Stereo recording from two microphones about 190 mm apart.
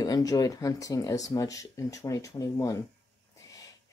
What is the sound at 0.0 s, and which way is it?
Speech, 20° left (ahead or behind).